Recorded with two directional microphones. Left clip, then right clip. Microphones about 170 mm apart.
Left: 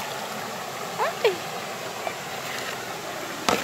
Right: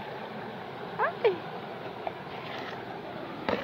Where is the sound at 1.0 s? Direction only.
20° left (ahead or behind).